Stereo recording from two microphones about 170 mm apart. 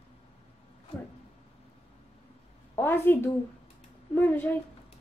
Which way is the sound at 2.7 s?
15° left (ahead or behind).